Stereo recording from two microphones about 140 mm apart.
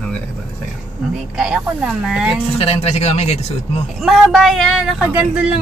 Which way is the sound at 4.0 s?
Centre (ahead or behind).